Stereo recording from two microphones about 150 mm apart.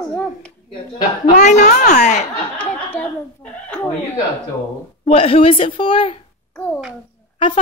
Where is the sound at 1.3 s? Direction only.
50° left (ahead or behind).